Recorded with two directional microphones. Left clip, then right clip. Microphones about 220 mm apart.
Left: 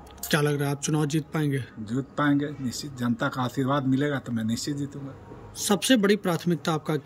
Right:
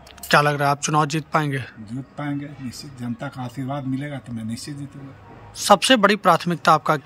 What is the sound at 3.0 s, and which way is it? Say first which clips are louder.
Speech: left 5 dB; 25° left (ahead or behind).